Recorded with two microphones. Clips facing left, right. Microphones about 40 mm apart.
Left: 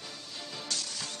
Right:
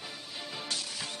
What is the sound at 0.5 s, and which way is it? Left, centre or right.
Music, centre.